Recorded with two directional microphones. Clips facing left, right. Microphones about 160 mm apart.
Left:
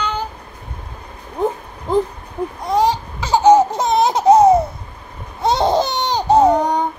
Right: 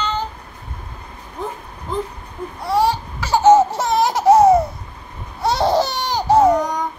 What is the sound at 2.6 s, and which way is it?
Laughter, 20° left (ahead or behind).